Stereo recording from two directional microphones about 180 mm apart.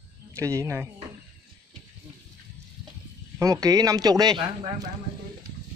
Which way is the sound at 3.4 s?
20° right (ahead or behind).